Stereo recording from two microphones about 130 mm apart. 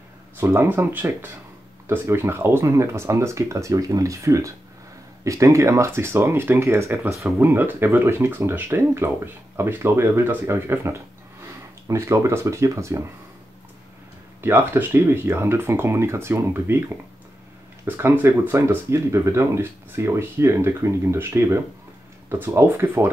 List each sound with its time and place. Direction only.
0.4 s speech: 15° right (ahead or behind)
14.4 s speech: 15° right (ahead or behind)